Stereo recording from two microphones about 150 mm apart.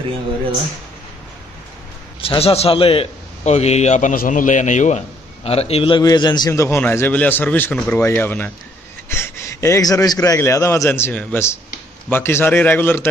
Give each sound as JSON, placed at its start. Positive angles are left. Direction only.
{"t": 2.2, "sound": "a man's voice", "side_deg": 40}